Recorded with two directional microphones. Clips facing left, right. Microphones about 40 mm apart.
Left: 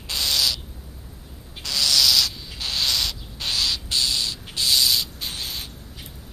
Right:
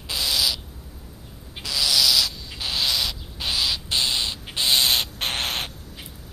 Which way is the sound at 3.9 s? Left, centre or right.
Right.